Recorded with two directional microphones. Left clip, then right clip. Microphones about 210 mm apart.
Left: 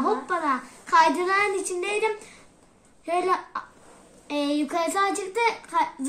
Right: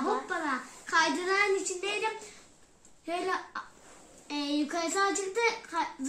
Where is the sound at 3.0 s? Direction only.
50° left (ahead or behind).